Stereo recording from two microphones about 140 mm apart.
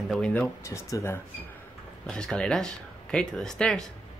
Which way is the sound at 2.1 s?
5° left (ahead or behind).